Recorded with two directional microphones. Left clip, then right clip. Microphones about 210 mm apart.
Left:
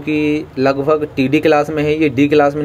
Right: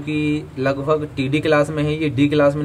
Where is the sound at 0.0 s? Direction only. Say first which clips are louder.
Left 6 dB; 10° left (ahead or behind).